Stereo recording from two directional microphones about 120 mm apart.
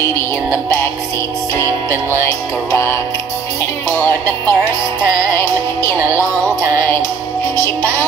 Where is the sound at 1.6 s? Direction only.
25° left (ahead or behind).